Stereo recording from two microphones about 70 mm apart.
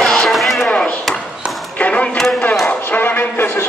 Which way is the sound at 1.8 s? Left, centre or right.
Centre.